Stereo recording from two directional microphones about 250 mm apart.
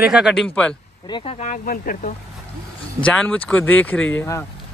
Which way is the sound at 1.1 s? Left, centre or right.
Left.